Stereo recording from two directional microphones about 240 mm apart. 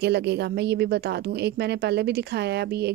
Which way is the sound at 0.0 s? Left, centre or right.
Right.